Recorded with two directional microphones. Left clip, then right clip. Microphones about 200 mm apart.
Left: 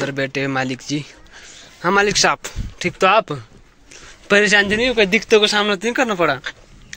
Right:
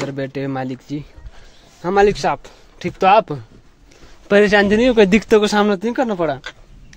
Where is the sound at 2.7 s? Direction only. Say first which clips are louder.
Right 2 dB; 10° right (ahead or behind).